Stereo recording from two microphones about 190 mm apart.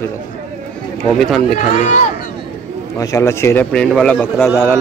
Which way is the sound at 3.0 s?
15° left (ahead or behind).